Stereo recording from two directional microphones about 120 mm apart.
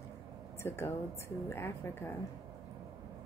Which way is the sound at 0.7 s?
20° left (ahead or behind).